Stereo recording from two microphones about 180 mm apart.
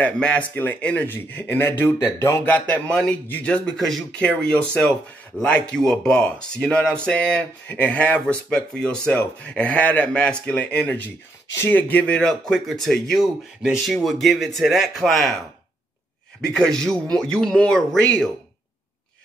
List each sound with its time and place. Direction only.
0.0 s speech: 5° left (ahead or behind)
16.3 s speech: 5° left (ahead or behind)